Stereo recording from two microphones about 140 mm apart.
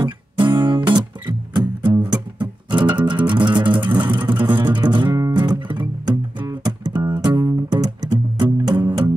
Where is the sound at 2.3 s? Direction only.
35° right (ahead or behind).